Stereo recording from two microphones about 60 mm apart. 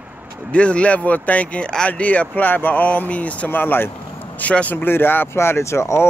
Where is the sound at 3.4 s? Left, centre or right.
Left.